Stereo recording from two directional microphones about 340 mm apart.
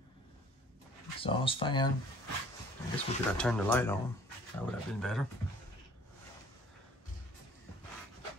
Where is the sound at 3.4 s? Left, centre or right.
Centre.